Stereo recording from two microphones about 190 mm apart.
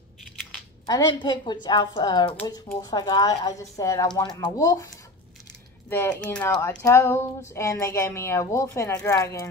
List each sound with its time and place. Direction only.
0.8 s a woman's voice: 20° left (ahead or behind)